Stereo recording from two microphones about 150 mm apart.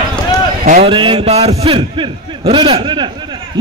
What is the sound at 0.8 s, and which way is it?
A man's voice, 35° right (ahead or behind).